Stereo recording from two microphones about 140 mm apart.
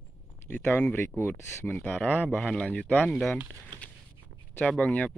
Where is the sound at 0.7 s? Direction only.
15° left (ahead or behind).